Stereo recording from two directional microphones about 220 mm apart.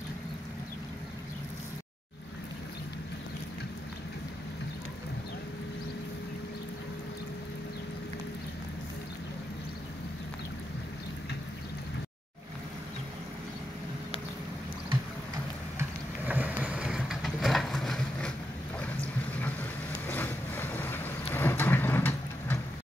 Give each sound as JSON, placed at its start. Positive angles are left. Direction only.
{"t": 15.8, "sound": "vehicle", "side_deg": -5}